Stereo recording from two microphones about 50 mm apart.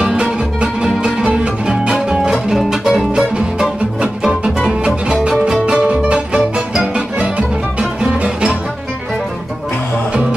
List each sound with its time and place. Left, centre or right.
0.0 s music: centre
3.1 s music: centre
7.8 s music: centre